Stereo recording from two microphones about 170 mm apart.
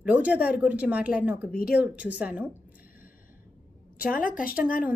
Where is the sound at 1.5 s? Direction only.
60° left (ahead or behind).